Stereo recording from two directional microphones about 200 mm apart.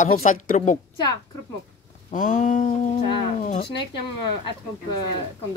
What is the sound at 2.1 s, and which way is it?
Speech, 40° left (ahead or behind).